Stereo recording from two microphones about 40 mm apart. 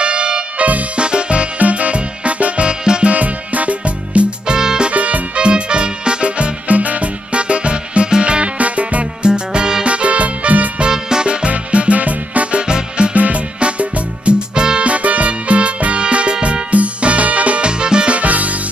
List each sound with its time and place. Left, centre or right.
0.0 s music: right
3.1 s music: right
4.5 s music: centre
4.9 s music: right
9.3 s music: right
9.8 s music: right
10.8 s music: centre
13.1 s music: right
18.1 s music: right